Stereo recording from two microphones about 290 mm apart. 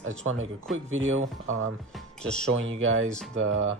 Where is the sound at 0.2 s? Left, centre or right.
Right.